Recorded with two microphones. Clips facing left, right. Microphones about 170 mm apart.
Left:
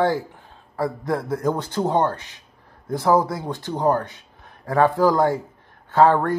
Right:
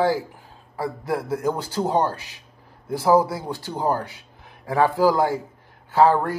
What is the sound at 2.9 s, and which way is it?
A man's voice, 10° right (ahead or behind).